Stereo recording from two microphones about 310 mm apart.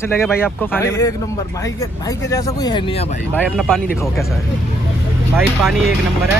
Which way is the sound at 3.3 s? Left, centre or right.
Centre.